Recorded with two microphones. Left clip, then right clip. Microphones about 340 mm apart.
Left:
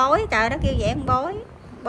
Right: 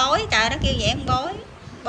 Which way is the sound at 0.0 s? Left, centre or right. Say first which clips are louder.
Even; centre.